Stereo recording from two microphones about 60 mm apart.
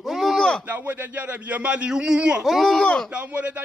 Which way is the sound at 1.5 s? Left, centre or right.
Right.